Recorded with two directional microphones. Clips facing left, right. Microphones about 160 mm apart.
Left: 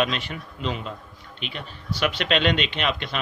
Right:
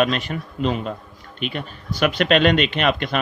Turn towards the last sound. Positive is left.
turn(degrees=-50)  # may be behind; listen again after turning